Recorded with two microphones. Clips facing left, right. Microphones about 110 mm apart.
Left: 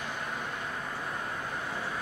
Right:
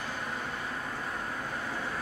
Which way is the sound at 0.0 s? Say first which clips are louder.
Even; centre (ahead or behind).